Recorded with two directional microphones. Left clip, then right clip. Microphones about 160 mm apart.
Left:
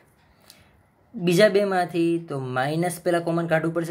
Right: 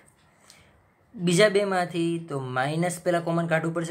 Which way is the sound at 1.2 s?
20° left (ahead or behind).